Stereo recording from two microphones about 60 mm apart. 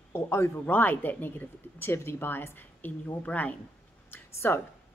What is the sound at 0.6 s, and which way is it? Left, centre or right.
Speech, left.